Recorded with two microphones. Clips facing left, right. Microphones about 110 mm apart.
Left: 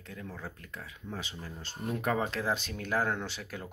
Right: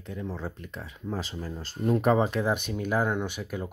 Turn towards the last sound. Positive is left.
turn(degrees=-15)  # may be behind; listen again after turning